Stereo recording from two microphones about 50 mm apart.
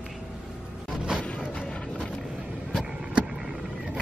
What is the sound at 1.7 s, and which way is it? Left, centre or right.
Vehicle, centre.